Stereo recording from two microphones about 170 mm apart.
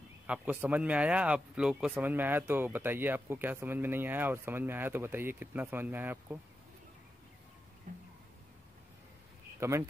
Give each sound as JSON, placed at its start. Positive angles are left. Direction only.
{"t": 0.3, "sound": "speech", "side_deg": -10}
{"t": 7.9, "sound": "music", "side_deg": -50}
{"t": 9.6, "sound": "speech", "side_deg": -15}